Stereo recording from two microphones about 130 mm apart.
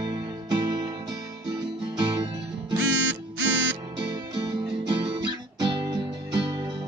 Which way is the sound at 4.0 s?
35° right (ahead or behind).